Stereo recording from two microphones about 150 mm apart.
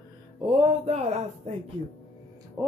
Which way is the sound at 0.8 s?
45° right (ahead or behind).